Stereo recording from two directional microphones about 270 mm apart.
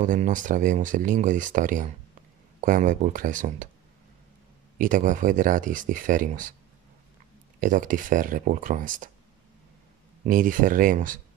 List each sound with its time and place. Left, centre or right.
0.0 s speech: right
4.7 s speech: right
7.6 s speech: right
10.2 s speech: right